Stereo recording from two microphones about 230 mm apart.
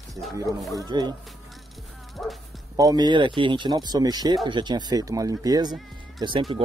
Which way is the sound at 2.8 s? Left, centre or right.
Centre.